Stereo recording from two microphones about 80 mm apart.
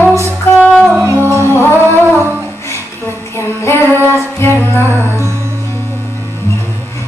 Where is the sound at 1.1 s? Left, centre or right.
Right.